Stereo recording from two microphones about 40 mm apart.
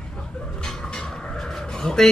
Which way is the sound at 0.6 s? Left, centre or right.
Centre.